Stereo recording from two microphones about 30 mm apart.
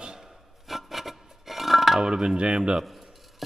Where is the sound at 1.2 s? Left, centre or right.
Centre.